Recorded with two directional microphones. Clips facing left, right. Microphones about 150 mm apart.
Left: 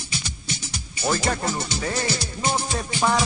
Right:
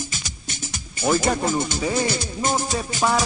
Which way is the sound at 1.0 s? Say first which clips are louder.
Right 4 dB; 15° right (ahead or behind).